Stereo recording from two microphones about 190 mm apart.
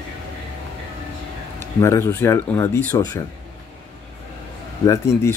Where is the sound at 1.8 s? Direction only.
15° left (ahead or behind).